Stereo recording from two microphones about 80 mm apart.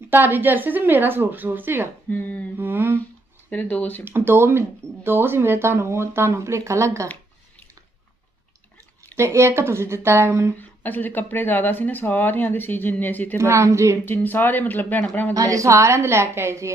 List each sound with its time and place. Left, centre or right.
0.1 s a woman's voice: right
2.0 s speech: left
2.5 s humming: right
3.4 s speech: centre
4.0 s speech: right
9.1 s speech: right
10.6 s speech: left
13.4 s speech: right
14.0 s speech: left
15.3 s speech: right